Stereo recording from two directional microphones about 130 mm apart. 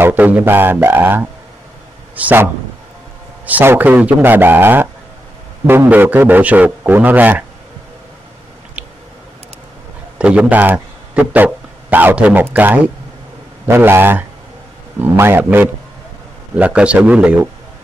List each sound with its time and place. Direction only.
0.0 s a man's voice: 15° right (ahead or behind)
10.1 s a man's voice: 10° right (ahead or behind)
13.7 s a man's voice: 15° right (ahead or behind)